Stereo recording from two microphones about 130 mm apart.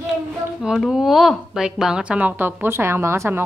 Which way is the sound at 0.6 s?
5° right (ahead or behind).